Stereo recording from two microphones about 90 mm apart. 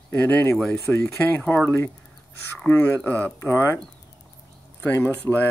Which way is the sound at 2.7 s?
25° left (ahead or behind).